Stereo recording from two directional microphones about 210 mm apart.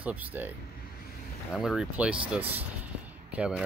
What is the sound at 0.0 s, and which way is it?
Speech, 5° right (ahead or behind).